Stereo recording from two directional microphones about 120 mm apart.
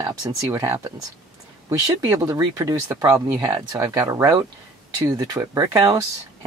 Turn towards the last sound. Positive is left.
turn(degrees=-30)  # may be behind; listen again after turning